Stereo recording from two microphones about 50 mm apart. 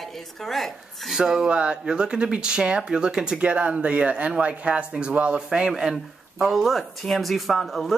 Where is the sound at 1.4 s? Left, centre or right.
Right.